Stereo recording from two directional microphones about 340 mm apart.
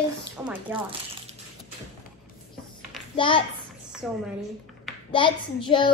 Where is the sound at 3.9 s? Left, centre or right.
Centre.